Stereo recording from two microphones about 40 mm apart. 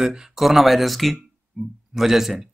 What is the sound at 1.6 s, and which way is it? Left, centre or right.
Speech, centre.